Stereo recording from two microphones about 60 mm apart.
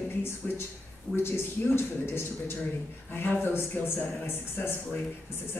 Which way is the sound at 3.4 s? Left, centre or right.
Left.